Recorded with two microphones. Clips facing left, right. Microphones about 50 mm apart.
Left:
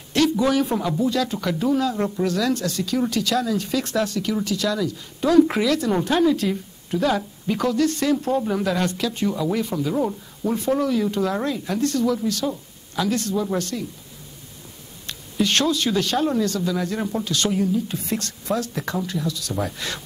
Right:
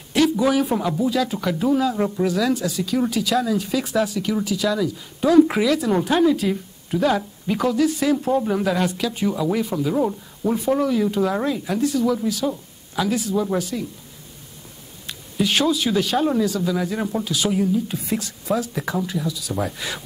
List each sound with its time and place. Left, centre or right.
0.1 s speech: centre
15.0 s speech: centre